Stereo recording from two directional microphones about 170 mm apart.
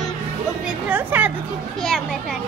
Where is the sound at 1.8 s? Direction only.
Centre (ahead or behind).